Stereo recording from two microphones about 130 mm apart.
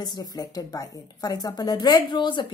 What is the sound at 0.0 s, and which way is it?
A woman's voice, 30° left (ahead or behind).